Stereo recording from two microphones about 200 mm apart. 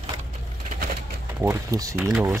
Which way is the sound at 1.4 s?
15° right (ahead or behind).